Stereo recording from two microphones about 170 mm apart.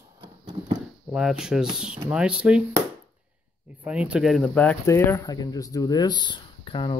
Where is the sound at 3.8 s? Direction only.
5° right (ahead or behind).